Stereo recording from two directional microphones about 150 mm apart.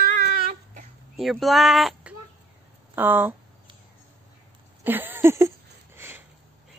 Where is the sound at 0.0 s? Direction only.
60° right (ahead or behind).